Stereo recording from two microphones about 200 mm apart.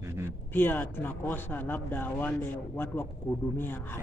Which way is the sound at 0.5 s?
10° left (ahead or behind).